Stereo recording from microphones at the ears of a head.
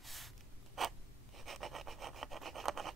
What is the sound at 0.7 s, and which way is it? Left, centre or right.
Rub, right.